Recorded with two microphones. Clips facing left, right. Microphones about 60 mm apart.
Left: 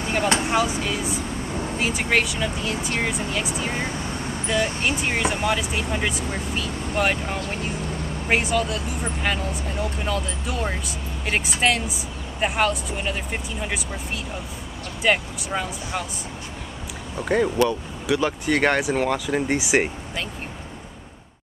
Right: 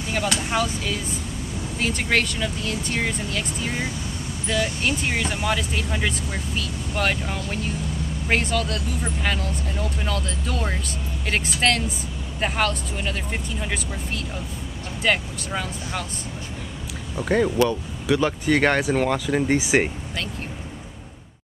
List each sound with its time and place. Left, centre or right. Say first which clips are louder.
0.2 s speech: left 4 dB; left
0.5 s speech: left 2 dB; centre
1.5 s vehicle: left 4 dB; left
1.8 s speech: even; centre
3.7 s speech: left 1 dB; left
4.8 s speech: left 1 dB; centre
17.2 s speech: even; centre
18.8 s speech: right 1 dB; centre